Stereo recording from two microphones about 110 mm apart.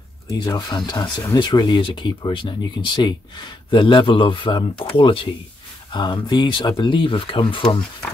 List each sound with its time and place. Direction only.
0.3 s speech: 35° left (ahead or behind); by 7.6 s 55° left (ahead or behind)